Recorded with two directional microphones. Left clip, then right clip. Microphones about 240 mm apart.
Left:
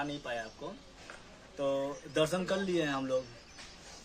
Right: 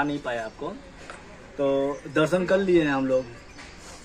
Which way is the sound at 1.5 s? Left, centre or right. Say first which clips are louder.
Right 9 dB; centre.